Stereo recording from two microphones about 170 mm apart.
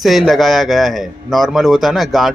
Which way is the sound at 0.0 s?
Centre (ahead or behind).